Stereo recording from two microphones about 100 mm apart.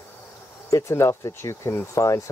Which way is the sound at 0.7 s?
30° left (ahead or behind).